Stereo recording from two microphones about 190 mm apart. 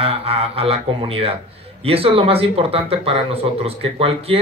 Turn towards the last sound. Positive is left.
turn(degrees=-30)  # may be behind; listen again after turning